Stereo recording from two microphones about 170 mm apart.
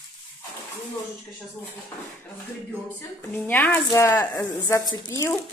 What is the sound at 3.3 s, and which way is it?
Speech, 10° left (ahead or behind).